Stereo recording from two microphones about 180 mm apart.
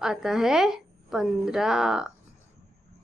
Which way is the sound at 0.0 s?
5° right (ahead or behind).